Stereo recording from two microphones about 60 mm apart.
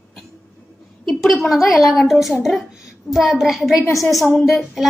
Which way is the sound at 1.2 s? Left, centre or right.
Centre.